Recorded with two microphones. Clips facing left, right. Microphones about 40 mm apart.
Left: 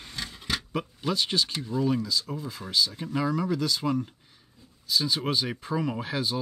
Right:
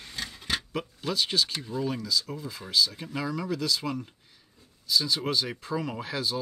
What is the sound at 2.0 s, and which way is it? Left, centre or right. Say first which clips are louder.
Speech: even; centre.